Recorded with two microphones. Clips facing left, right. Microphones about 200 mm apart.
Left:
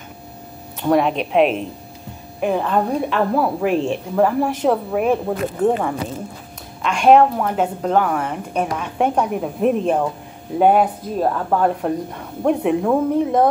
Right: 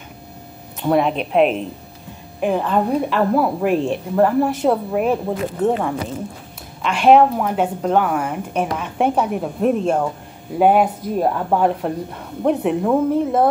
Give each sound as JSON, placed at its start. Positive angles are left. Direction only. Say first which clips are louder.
{"t": 0.8, "sound": "a woman's voice", "louder": "even", "side_deg": -5}